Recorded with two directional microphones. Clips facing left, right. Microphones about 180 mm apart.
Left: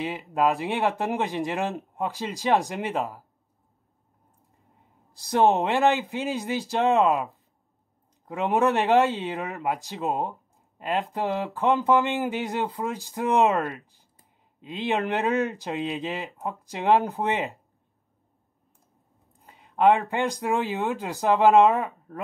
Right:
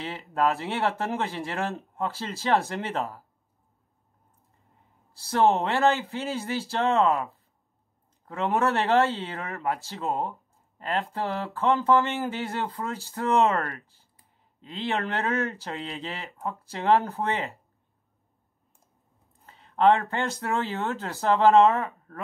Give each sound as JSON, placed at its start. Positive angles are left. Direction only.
{"t": 0.0, "sound": "speech", "side_deg": 15}
{"t": 5.1, "sound": "speech", "side_deg": 15}
{"t": 19.4, "sound": "speech", "side_deg": 15}